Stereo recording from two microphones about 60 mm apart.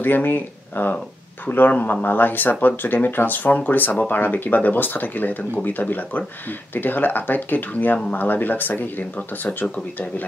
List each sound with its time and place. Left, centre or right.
0.0 s speech: left